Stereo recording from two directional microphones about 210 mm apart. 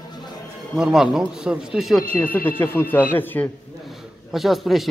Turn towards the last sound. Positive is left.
turn(degrees=0)  # may be behind; listen again after turning